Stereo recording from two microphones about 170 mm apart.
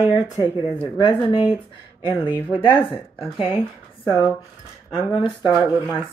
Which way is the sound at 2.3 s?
10° left (ahead or behind).